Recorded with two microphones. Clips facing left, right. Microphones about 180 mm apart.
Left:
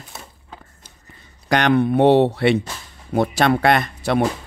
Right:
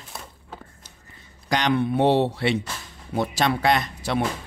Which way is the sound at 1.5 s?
60° left (ahead or behind).